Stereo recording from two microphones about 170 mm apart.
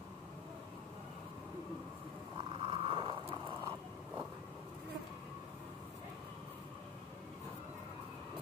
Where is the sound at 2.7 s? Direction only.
30° right (ahead or behind).